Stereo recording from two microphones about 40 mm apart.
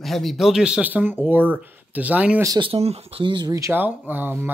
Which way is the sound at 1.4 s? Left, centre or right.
Right.